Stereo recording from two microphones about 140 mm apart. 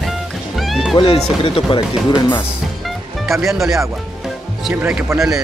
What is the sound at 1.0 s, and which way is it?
Speech, 40° left (ahead or behind).